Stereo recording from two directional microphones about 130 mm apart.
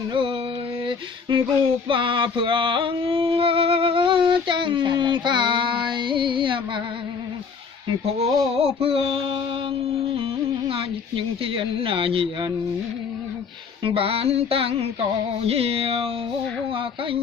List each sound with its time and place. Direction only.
1.9 s music: 40° right (ahead or behind)
8.0 s a sound: 50° right (ahead or behind)
10.7 s speech: 45° right (ahead or behind)
13.8 s speech: 45° right (ahead or behind)